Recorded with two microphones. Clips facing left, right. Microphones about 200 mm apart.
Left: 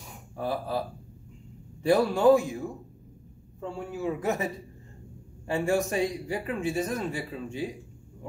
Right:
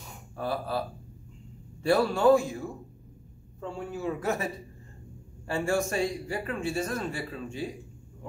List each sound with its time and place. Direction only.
0.4 s a man's voice: 15° left (ahead or behind)
3.7 s a man's voice: 10° left (ahead or behind)
5.5 s a man's voice: 20° left (ahead or behind)